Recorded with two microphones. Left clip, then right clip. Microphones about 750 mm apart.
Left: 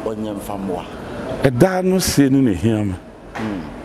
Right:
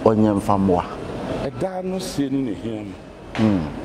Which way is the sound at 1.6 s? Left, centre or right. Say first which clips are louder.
Left 9 dB; left.